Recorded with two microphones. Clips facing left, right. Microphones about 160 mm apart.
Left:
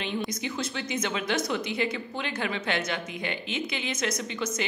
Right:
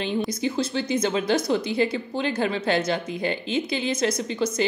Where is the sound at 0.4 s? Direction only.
35° right (ahead or behind).